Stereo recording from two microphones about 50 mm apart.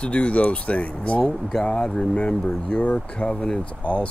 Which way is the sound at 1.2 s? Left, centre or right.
Centre.